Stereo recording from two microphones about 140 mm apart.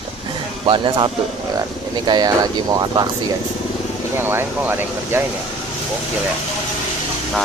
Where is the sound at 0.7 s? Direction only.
35° right (ahead or behind).